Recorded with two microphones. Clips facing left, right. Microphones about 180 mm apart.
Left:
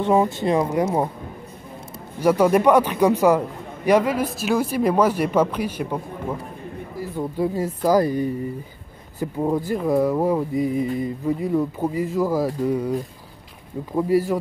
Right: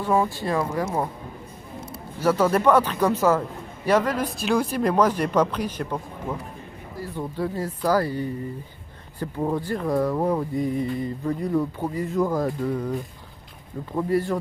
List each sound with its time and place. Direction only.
0.0 s speech: 20° left (ahead or behind)
2.1 s a man's voice: 15° left (ahead or behind)
13.9 s a man's voice: 10° left (ahead or behind)